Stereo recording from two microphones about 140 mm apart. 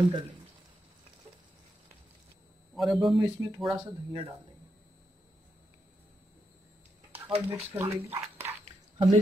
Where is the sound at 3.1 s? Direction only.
30° right (ahead or behind).